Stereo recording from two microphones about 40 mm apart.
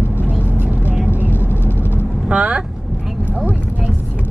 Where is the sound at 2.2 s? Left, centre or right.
Right.